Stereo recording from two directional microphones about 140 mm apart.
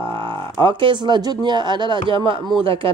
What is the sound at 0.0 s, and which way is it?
Speech, 40° right (ahead or behind).